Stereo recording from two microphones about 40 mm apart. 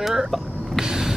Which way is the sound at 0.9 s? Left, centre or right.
Centre.